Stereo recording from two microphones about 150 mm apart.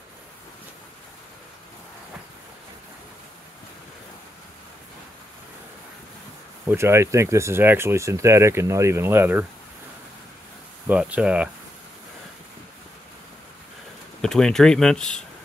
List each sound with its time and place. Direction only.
6.6 s speech: 15° right (ahead or behind)
10.9 s speech: 10° right (ahead or behind)
14.2 s speech: 5° left (ahead or behind)